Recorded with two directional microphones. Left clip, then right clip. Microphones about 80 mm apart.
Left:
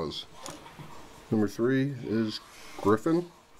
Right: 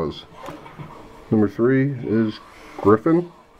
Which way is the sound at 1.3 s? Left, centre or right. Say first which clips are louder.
Right 9 dB; centre.